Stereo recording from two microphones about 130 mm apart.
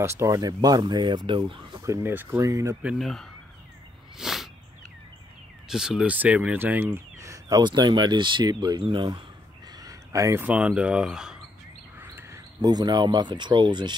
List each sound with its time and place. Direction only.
0.0 s speech: 20° right (ahead or behind); by 1.8 s 40° right (ahead or behind)
1.8 s speech: 20° right (ahead or behind)
3.0 s speech: centre (ahead or behind)
4.2 s a sound: centre (ahead or behind)
5.7 s speech: 5° right (ahead or behind); by 9.2 s 35° right (ahead or behind)
9.8 s a sound: 25° right (ahead or behind)
10.4 s speech: 10° right (ahead or behind)
12.0 s a sound: 15° right (ahead or behind)
12.6 s speech: 30° right (ahead or behind)